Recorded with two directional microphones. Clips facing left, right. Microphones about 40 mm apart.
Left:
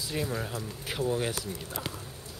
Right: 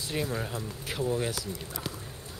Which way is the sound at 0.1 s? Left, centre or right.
Centre.